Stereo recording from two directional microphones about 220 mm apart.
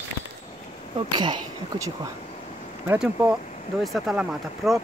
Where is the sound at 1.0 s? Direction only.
20° right (ahead or behind); by 4.8 s centre (ahead or behind).